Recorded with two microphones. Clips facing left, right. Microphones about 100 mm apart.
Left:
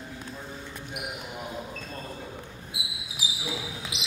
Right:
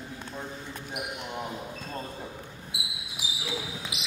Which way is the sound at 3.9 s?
25° left (ahead or behind).